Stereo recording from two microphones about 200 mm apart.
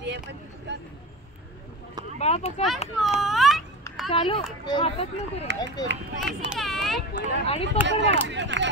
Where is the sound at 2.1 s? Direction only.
30° left (ahead or behind).